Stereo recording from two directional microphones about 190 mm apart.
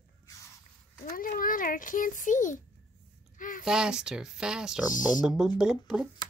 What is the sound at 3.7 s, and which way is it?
Speech, 5° right (ahead or behind).